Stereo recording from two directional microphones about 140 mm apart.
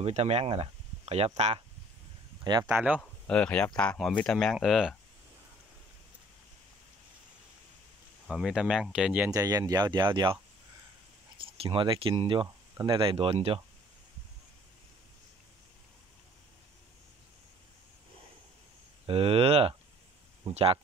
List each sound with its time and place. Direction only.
0.0 s speech: 50° right (ahead or behind)
2.4 s speech: 30° right (ahead or behind)
2.7 s speech: 10° right (ahead or behind)
3.0 s speech: 10° left (ahead or behind)
8.3 s speech: 5° right (ahead or behind)
9.3 s speech: 25° right (ahead or behind); by 13.6 s 40° right (ahead or behind)
19.0 s speech: 40° right (ahead or behind)